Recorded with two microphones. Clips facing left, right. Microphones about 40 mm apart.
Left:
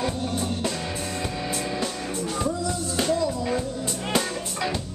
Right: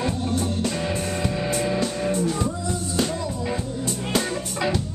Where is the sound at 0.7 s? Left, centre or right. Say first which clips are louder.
Right 4 dB; centre.